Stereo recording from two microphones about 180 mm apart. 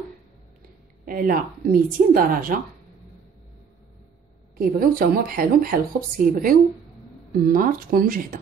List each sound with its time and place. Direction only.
1.0 s speech: 50° right (ahead or behind)
4.6 s speech: 55° right (ahead or behind)